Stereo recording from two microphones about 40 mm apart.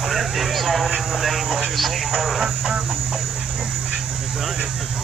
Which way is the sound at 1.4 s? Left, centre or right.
Centre.